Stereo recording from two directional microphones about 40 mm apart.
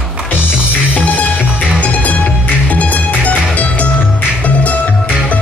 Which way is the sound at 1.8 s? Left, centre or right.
Left.